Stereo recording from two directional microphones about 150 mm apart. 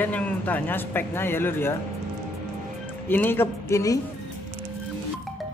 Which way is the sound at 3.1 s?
15° left (ahead or behind).